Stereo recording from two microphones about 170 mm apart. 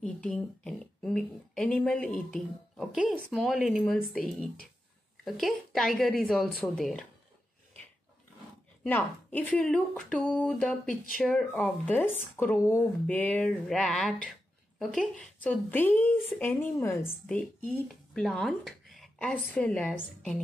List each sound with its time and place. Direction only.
0.0 s speech: 5° left (ahead or behind)
2.0 s speech: 50° left (ahead or behind)
2.3 s a woman's voice: centre (ahead or behind)
5.2 s a woman's voice: centre (ahead or behind)
8.8 s speech: 10° left (ahead or behind)